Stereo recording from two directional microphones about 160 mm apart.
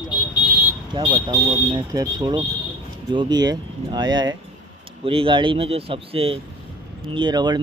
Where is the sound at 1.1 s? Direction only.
25° right (ahead or behind).